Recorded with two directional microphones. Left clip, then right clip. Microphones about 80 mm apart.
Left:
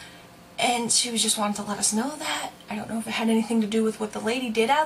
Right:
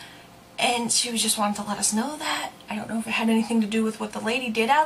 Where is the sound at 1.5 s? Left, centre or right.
Right.